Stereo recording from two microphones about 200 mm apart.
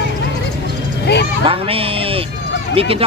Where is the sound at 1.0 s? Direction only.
55° left (ahead or behind).